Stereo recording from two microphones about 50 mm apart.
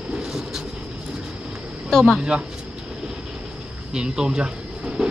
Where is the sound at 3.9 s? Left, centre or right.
Centre.